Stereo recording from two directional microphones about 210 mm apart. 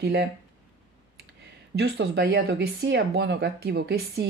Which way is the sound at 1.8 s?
50° right (ahead or behind).